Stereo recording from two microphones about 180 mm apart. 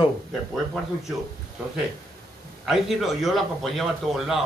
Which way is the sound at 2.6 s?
Centre (ahead or behind).